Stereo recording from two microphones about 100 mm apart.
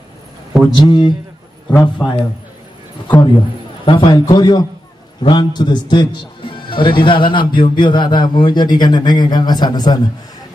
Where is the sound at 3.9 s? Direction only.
55° left (ahead or behind).